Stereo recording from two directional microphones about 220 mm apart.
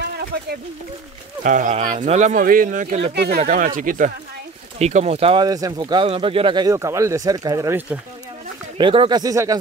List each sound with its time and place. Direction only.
1.4 s speech: 35° right (ahead or behind)
3.1 s speech: 45° right (ahead or behind)
3.3 s speech: 35° right (ahead or behind); by 8.0 s 10° right (ahead or behind)
8.7 s speech: 25° right (ahead or behind)